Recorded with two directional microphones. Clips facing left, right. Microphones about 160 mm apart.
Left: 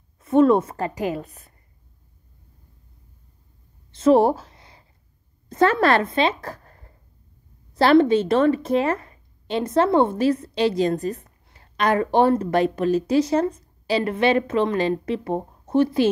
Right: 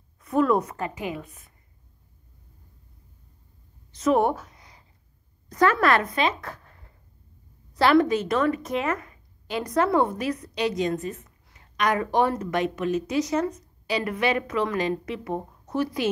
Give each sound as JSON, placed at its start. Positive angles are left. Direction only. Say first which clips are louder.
{"t": 0.2, "sound": "a woman's voice", "louder": "left 6 dB", "side_deg": 25}
{"t": 3.9, "sound": "a sound", "louder": "left 5 dB", "side_deg": 30}
{"t": 5.5, "sound": "a woman's voice", "louder": "left 3 dB", "side_deg": 25}
{"t": 7.7, "sound": "speech", "louder": "left 4 dB", "side_deg": 25}